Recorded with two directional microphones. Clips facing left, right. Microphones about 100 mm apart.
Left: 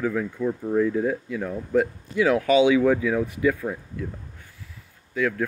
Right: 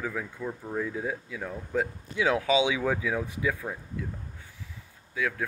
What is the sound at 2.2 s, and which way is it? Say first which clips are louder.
Speech: left 6 dB; 15° right (ahead or behind).